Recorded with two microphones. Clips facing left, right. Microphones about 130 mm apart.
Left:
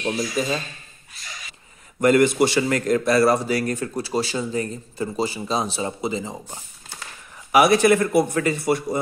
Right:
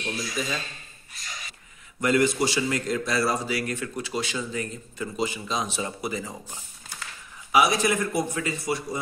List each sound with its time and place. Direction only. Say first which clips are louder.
0.4 s speech: left 5 dB; 40° left (ahead or behind)
2.0 s a man's voice: left 6 dB; 50° left (ahead or behind); by 7.0 s 25° left (ahead or behind)
7.5 s a man's voice: left 6 dB; 60° left (ahead or behind)